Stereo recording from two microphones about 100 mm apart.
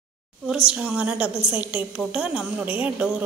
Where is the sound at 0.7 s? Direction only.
15° right (ahead or behind).